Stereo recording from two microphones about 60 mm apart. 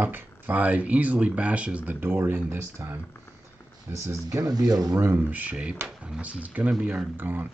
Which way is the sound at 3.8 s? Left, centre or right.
Right.